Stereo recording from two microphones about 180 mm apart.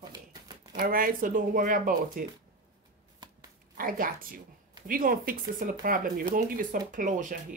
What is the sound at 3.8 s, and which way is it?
Speech, 50° right (ahead or behind).